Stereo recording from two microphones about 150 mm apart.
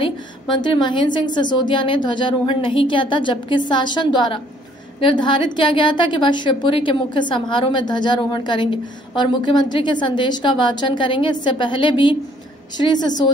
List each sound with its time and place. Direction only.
0.0 s a woman's voice: 30° left (ahead or behind)